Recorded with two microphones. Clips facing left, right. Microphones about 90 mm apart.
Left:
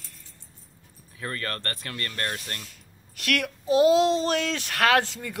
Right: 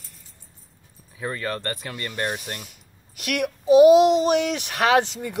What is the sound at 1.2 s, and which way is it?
Speech, 15° right (ahead or behind).